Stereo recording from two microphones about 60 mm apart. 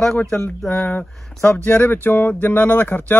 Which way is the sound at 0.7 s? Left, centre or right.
Left.